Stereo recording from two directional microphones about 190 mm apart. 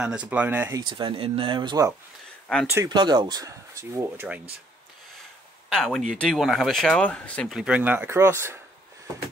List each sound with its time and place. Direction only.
0.3 s speech: 10° right (ahead or behind)
0.7 s speech: 25° right (ahead or behind)
5.7 s speech: centre (ahead or behind)